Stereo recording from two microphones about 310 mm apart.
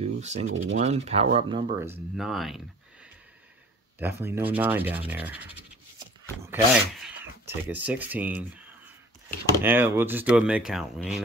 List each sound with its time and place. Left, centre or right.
0.0 s speech: right; by 2.6 s centre
4.0 s speech: centre
9.6 s speech: centre